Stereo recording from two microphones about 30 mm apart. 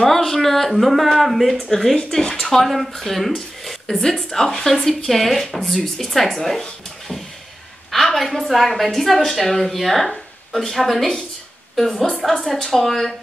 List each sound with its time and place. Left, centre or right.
0.0 s a woman's voice: centre
2.3 s a woman's voice: centre
7.9 s a woman's voice: centre